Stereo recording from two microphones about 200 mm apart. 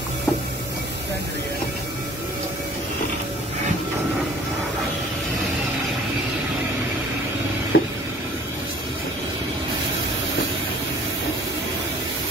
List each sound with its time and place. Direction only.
7.7 s vehicle: 80° left